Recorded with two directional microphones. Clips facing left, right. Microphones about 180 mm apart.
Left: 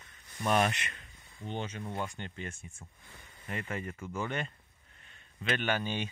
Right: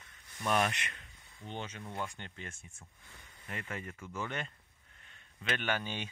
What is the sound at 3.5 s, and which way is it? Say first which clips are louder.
Speech: left 4 dB; 40° left (ahead or behind).